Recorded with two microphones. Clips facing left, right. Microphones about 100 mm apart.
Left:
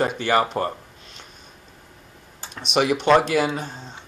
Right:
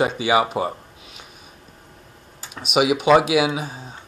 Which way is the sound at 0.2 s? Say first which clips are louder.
Right 1 dB; 5° right (ahead or behind).